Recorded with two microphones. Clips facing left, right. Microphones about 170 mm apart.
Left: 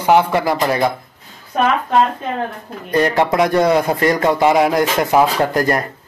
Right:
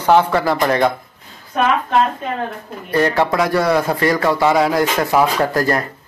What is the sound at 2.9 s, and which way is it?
A man's voice, 20° left (ahead or behind).